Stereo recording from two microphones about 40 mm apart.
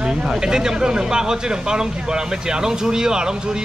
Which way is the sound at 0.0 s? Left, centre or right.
Centre.